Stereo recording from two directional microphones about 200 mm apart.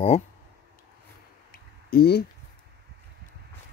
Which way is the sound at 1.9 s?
50° left (ahead or behind).